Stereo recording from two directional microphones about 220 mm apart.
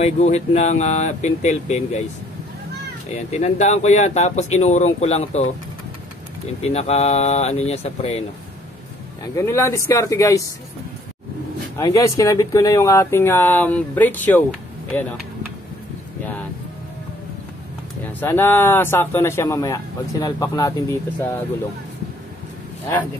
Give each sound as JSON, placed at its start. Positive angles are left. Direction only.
{"t": 0.0, "sound": "speech", "side_deg": 30}
{"t": 3.3, "sound": "speech", "side_deg": 30}
{"t": 6.6, "sound": "speech", "side_deg": 30}
{"t": 9.2, "sound": "a man's voice", "side_deg": 15}
{"t": 11.8, "sound": "a man's voice", "side_deg": 15}
{"t": 18.0, "sound": "a man's voice", "side_deg": 10}